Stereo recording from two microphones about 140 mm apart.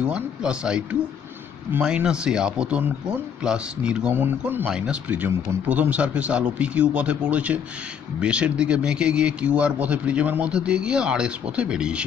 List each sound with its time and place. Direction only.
0.0 s speech: 5° right (ahead or behind)